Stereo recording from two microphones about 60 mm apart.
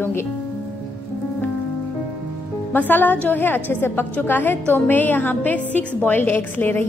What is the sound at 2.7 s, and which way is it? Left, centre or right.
A woman's voice, left.